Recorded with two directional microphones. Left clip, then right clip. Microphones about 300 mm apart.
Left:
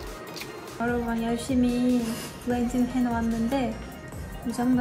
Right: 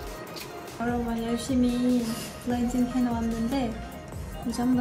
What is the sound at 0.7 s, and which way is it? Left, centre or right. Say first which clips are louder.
Speech: left 2 dB; centre.